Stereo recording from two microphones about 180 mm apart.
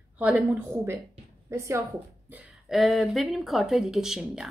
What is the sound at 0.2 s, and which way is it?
Speech, 10° right (ahead or behind).